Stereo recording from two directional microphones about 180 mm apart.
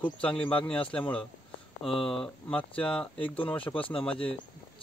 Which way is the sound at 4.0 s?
30° left (ahead or behind).